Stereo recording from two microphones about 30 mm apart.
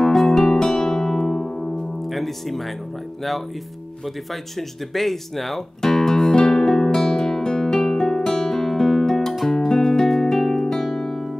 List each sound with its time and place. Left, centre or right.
0.0 s music: centre
1.4 s piano: left
2.0 s speech: centre
4.0 s speech: centre
5.8 s music: centre
7.0 s music: centre
7.2 s music: centre
8.2 s music: centre